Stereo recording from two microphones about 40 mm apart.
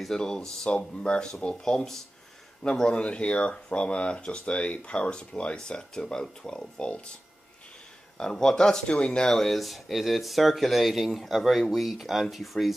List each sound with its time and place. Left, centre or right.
0.2 s speech: left
8.2 s speech: centre
9.3 s speech: centre